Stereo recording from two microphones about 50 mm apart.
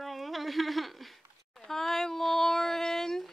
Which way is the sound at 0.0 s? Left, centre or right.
Centre.